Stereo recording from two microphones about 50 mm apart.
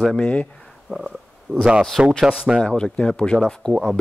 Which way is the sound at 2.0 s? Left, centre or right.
Centre.